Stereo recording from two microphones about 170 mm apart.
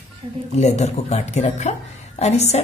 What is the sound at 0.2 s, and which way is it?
Speech, 35° right (ahead or behind).